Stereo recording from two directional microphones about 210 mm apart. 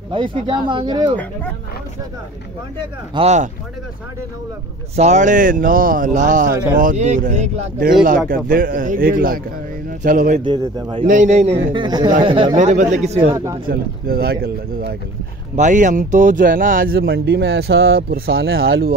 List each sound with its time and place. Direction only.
0.1 s speech: 25° right (ahead or behind)
3.2 s a man's voice: 30° right (ahead or behind)
4.9 s a man's voice: 35° right (ahead or behind)
10.4 s speech: 20° right (ahead or behind)
11.1 s a man's voice: 35° right (ahead or behind)
13.3 s speech: 15° right (ahead or behind)
13.7 s speech: 45° right (ahead or behind)
15.5 s speech: 35° right (ahead or behind)